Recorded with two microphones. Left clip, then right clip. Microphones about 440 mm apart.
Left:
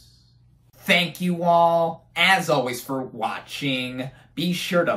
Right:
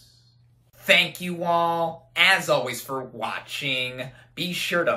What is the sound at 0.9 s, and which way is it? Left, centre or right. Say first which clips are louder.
Speech: right 1 dB; centre.